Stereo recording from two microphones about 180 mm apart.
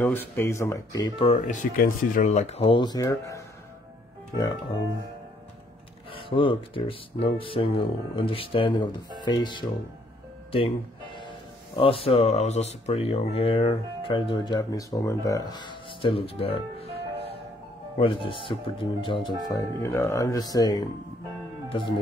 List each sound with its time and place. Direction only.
0.0 s speech: 10° left (ahead or behind); by 1.4 s 30° left (ahead or behind)
1.5 s speech: 45° left (ahead or behind); by 4.7 s 20° left (ahead or behind)
6.1 s speech: 30° left (ahead or behind)
11.1 s speech: 30° left (ahead or behind)
16.8 s music: 35° right (ahead or behind)
17.9 s speech: 30° left (ahead or behind)
19.4 s speech: 15° left (ahead or behind)